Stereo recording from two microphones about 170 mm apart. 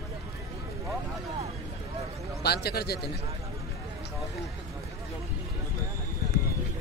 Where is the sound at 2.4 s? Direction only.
70° left (ahead or behind).